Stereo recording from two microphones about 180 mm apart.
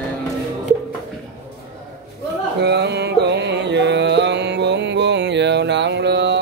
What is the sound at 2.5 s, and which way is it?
Music, 70° right (ahead or behind).